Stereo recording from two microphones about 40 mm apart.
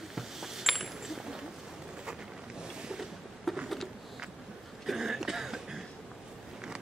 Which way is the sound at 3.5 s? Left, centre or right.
Centre.